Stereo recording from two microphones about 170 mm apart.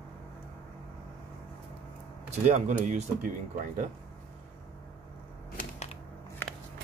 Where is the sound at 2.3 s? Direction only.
45° right (ahead or behind).